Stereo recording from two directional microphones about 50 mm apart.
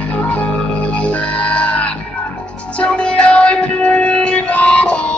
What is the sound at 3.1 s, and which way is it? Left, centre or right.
Music, left.